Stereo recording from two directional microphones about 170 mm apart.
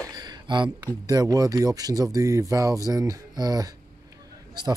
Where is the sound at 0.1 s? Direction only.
25° right (ahead or behind).